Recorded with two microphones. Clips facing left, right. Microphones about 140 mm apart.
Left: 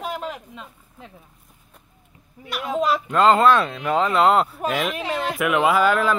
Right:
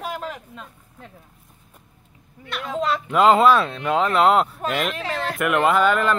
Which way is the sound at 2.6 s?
20° left (ahead or behind).